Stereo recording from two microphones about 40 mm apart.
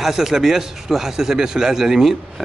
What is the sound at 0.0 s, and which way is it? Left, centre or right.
A man's voice, centre.